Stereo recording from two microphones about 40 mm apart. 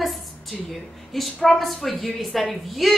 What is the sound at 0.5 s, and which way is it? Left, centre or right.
A woman's voice, centre.